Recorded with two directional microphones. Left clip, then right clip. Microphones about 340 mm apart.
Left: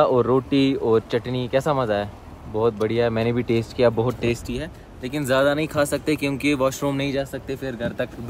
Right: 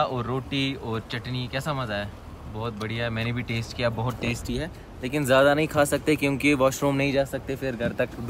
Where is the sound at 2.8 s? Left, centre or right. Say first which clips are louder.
Left 9 dB; centre.